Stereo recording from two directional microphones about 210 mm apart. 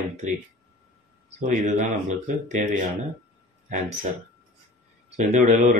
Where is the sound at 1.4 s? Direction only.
35° right (ahead or behind).